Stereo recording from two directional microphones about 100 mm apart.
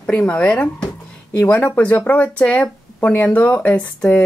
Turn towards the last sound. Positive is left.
turn(degrees=15)  # may be behind; listen again after turning